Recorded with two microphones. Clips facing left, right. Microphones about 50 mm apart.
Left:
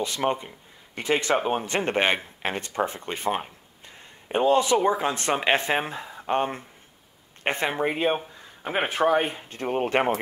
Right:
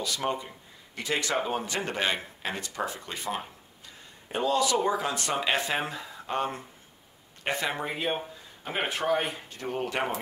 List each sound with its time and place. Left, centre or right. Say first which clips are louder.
0.0 s speech: left 5 dB; left